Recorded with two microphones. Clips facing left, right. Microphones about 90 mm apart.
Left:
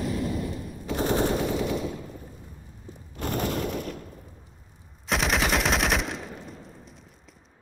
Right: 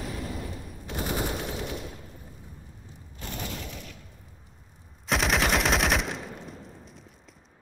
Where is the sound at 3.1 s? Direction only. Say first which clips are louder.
Left 9 dB; 55° left (ahead or behind).